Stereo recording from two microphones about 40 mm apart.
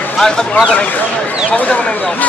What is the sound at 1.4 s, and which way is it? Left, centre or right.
Speech, left.